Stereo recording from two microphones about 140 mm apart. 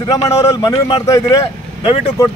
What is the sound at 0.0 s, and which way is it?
Speech, 25° left (ahead or behind).